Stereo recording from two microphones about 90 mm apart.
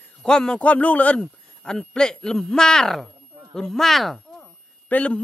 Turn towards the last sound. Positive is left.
turn(degrees=15)  # may be behind; listen again after turning